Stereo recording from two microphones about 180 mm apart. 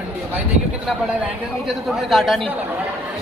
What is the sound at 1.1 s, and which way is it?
Speech, 5° right (ahead or behind).